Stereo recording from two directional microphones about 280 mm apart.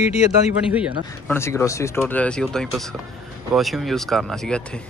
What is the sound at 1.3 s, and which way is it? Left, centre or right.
Speech, centre.